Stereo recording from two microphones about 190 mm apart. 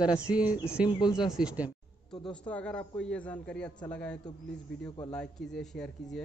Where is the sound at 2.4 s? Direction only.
5° left (ahead or behind).